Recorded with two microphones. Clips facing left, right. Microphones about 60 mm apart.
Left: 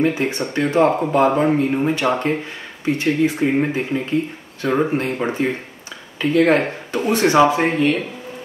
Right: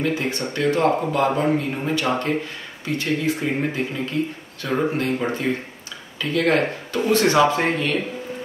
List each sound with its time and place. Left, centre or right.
0.0 s speech: left